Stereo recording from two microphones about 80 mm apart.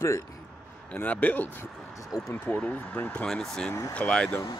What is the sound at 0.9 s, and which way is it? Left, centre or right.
Speech, left.